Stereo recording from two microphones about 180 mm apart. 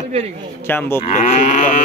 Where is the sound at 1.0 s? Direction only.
40° left (ahead or behind).